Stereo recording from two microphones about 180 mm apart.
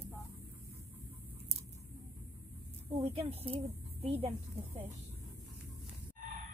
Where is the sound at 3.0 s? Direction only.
30° right (ahead or behind).